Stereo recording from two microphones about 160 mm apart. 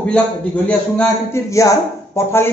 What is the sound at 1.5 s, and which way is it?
Speech, 20° left (ahead or behind).